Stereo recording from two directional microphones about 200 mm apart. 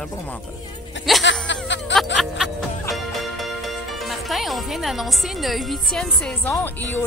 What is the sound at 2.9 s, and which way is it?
Speech, centre (ahead or behind).